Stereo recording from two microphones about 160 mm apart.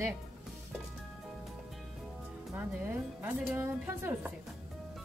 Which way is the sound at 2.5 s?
15° right (ahead or behind).